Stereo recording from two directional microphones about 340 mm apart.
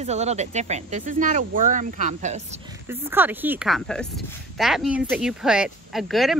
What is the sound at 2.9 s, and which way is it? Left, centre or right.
Speech, centre.